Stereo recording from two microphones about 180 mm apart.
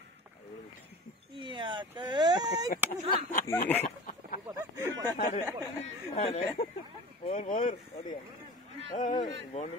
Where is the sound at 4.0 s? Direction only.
50° left (ahead or behind).